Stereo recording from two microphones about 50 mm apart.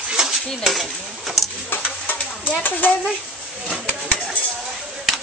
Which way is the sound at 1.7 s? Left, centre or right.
Left.